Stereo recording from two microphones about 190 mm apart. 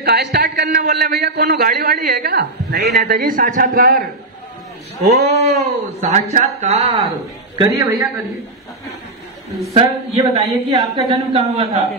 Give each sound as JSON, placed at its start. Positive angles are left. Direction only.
{"t": 0.0, "sound": "a man's voice", "side_deg": -55}
{"t": 5.1, "sound": "a man's voice", "side_deg": -35}
{"t": 7.5, "sound": "a man's voice", "side_deg": -20}
{"t": 9.8, "sound": "a man's voice", "side_deg": -30}